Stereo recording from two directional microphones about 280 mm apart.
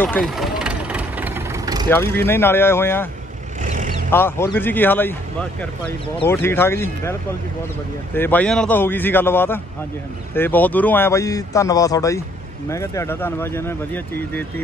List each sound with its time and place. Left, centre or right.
0.0 s vehicle: centre
2.2 s speech: centre
3.6 s vehicle: right
4.1 s speech: centre
6.2 s speech: centre